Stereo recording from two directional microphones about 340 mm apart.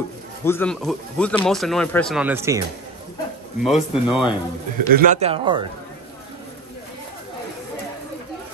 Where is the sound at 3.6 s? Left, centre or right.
Centre.